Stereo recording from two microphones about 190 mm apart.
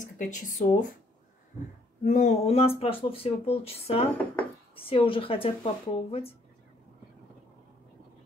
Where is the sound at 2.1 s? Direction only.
40° left (ahead or behind).